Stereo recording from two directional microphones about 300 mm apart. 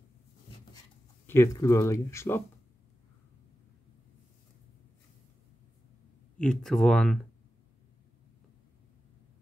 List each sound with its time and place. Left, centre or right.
1.2 s speech: centre
6.3 s speech: centre